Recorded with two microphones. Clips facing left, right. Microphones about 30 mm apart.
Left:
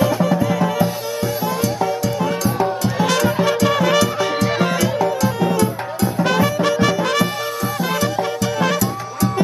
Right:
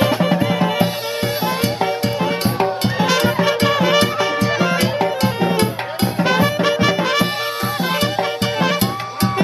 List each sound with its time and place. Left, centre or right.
0.0 s music: right
1.4 s music: right
3.6 s music: right
4.6 s music: right
5.6 s music: right
6.2 s music: right
7.9 s music: right
8.7 s music: right